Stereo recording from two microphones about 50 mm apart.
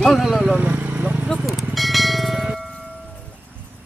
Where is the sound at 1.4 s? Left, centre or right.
Centre.